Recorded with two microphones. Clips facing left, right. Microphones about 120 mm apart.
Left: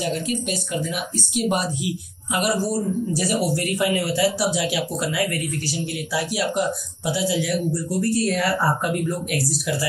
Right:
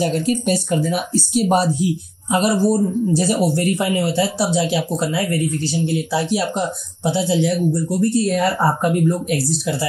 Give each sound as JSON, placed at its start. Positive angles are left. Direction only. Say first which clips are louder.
{"t": 0.0, "sound": "speech", "louder": "right 6 dB", "side_deg": -40}